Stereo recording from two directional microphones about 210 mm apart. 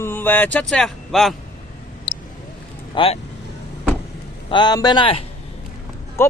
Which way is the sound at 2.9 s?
25° left (ahead or behind).